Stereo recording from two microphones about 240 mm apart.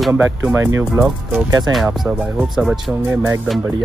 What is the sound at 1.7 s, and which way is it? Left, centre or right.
Speech, centre.